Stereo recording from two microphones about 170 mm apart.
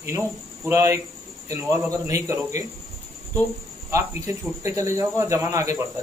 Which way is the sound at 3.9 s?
15° right (ahead or behind).